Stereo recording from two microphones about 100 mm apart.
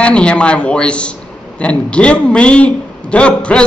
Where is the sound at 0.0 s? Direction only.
10° left (ahead or behind).